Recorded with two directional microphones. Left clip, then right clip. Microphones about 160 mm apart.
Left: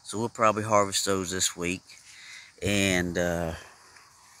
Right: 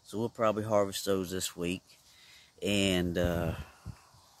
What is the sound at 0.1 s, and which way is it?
Speech, 10° right (ahead or behind).